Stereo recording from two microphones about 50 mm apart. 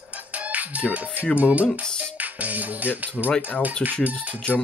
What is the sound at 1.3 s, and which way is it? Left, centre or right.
Speech, right.